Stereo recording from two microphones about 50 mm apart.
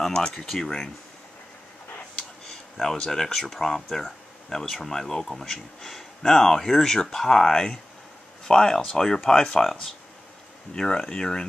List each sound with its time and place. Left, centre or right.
0.0 s speech: centre
2.4 s speech: centre